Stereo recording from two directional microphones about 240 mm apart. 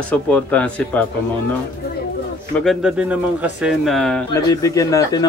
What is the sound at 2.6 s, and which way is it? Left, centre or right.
Speech, centre.